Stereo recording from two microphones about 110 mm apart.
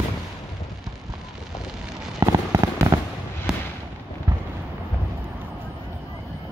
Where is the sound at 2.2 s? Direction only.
35° right (ahead or behind).